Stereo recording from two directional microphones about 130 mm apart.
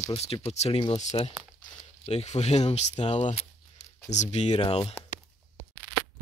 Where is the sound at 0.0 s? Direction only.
50° left (ahead or behind).